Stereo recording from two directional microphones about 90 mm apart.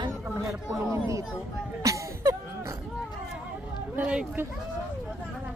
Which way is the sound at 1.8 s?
35° right (ahead or behind).